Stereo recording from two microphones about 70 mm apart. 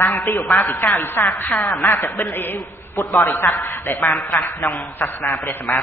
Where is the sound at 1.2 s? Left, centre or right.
Left.